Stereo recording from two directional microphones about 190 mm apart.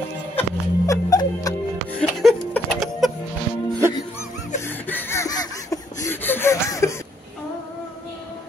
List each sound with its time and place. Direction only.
0.4 s music: 15° left (ahead or behind)
2.0 s music: 5° left (ahead or behind)
4.6 s a sound: 10° left (ahead or behind)